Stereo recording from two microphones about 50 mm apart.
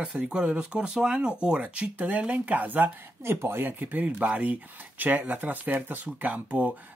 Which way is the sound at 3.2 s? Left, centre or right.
Right.